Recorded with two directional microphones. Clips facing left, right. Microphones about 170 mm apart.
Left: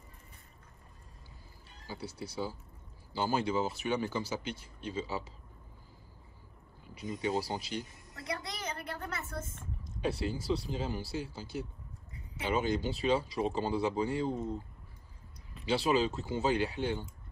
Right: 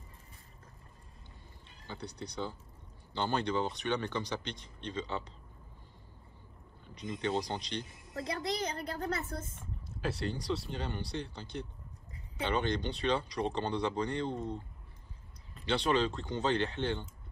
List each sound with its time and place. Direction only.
1.9 s speech: 5° left (ahead or behind)
7.0 s speech: 5° left (ahead or behind)
8.1 s a woman's voice: 35° right (ahead or behind)
9.6 s speech: 5° right (ahead or behind)